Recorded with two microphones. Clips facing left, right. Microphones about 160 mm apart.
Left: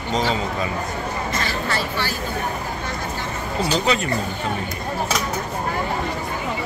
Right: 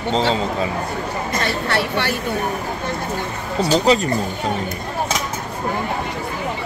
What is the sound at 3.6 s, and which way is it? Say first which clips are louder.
Speech: right 6 dB; 35° right (ahead or behind).